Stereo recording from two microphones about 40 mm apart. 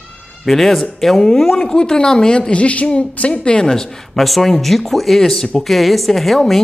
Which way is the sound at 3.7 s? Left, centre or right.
Centre.